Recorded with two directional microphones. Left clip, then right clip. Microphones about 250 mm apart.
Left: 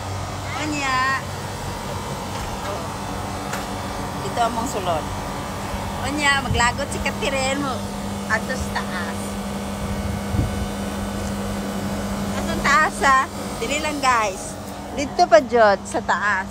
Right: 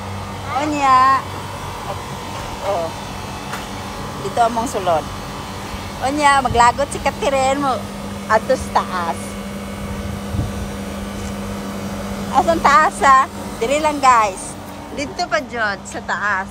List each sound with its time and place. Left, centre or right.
0.6 s speech: centre
4.4 s speech: centre
6.0 s speech: centre
8.3 s speech: centre
12.4 s speech: centre
15.0 s speech: centre
16.2 s speech: centre